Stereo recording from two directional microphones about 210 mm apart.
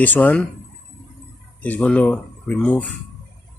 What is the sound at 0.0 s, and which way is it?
Speech, 10° left (ahead or behind).